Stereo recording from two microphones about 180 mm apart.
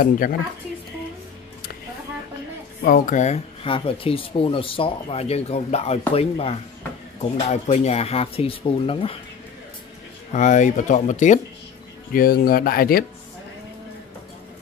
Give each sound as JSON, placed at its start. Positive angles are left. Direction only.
{"t": 0.0, "sound": "speech", "side_deg": 50}
{"t": 2.8, "sound": "speech", "side_deg": 50}
{"t": 10.3, "sound": "speech", "side_deg": 45}
{"t": 12.1, "sound": "speech", "side_deg": 55}